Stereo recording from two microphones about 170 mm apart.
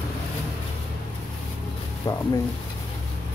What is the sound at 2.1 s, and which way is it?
Speech, 20° left (ahead or behind).